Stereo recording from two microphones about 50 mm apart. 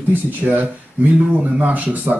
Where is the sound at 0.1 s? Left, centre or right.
Right.